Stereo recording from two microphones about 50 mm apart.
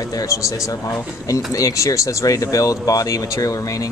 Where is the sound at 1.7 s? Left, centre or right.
Left.